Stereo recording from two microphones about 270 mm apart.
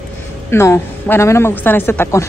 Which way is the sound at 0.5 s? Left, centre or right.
Centre.